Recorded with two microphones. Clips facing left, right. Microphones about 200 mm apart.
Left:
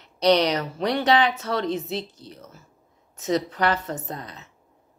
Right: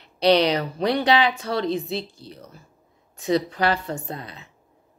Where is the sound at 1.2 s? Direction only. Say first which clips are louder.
Right 1 dB; 15° right (ahead or behind).